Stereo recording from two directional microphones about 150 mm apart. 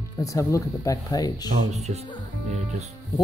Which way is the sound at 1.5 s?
45° right (ahead or behind).